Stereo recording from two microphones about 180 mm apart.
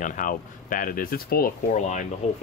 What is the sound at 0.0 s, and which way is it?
Speech, 45° left (ahead or behind).